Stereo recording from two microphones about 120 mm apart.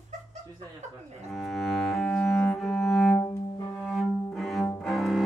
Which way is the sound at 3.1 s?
25° left (ahead or behind).